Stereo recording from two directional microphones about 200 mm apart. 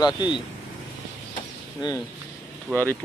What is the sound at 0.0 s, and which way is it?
Speech, 20° left (ahead or behind).